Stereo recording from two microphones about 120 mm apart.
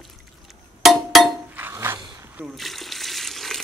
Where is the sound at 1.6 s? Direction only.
20° right (ahead or behind).